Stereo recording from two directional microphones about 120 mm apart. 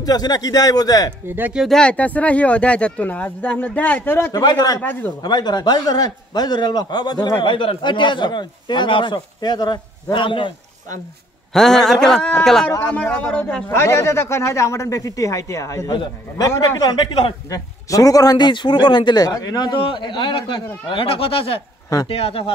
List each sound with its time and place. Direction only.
0.0 s a man's voice: 35° left (ahead or behind)
1.2 s speech: 15° right (ahead or behind)
1.6 s speech: 5° left (ahead or behind)
4.3 s a man's voice: 35° left (ahead or behind)
11.5 s speech: 5° left (ahead or behind)
13.7 s a man's voice: 25° left (ahead or behind)
15.9 s a man's voice: 40° left (ahead or behind)
16.4 s a man's voice: 30° left (ahead or behind); by 22.5 s 55° left (ahead or behind)